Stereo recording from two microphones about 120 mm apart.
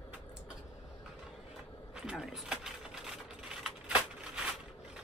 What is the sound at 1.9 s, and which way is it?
Typewriter, 5° right (ahead or behind).